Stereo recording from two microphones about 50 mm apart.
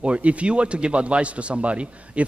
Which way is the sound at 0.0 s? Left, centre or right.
Right.